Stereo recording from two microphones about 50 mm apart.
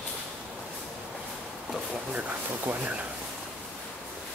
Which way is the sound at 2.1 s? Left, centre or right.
Right.